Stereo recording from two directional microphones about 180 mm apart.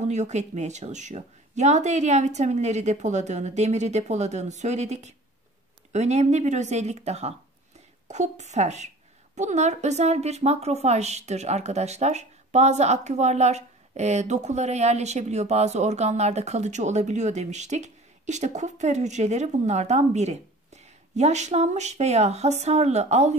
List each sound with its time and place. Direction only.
0.0 s a woman's voice: 40° right (ahead or behind)